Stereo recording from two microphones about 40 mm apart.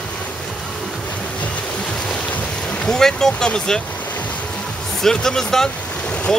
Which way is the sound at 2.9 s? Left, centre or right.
Centre.